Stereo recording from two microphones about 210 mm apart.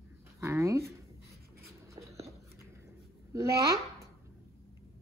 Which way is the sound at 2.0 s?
15° right (ahead or behind).